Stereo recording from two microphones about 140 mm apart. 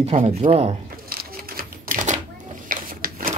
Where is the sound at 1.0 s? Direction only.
90° right.